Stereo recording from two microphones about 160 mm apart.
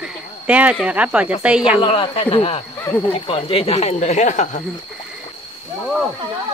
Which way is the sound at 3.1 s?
35° left (ahead or behind).